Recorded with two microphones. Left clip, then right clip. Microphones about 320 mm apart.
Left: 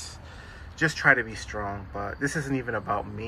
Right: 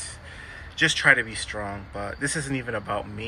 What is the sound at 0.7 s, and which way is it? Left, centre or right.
Speech, centre.